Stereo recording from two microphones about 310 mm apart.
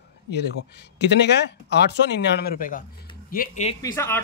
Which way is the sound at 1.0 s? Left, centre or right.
Left.